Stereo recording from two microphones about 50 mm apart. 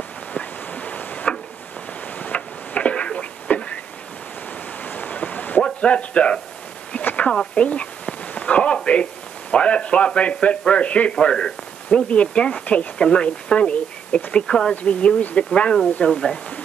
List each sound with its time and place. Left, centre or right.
0.3 s a sound: left
4.8 s waves: left
5.6 s speech: left
7.6 s a sound: left
9.5 s speech: left
16.1 s speech: centre